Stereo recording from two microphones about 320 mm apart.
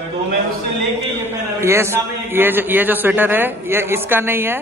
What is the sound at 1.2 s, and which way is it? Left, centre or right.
A man's voice, centre.